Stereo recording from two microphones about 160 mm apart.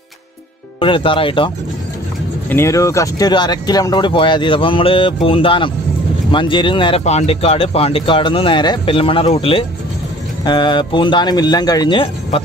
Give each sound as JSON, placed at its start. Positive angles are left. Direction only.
{"t": 0.7, "sound": "speech", "side_deg": 35}
{"t": 2.5, "sound": "speech", "side_deg": 20}